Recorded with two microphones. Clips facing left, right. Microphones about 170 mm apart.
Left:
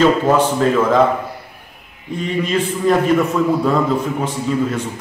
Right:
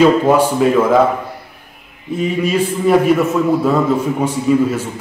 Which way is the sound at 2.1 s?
5° right (ahead or behind).